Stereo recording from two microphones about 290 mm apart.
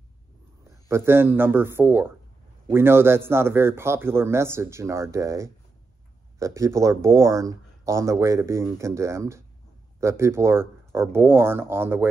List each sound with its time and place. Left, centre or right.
0.8 s speech: centre